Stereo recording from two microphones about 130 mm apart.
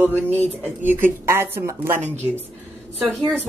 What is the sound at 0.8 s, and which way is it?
Speech, 15° right (ahead or behind).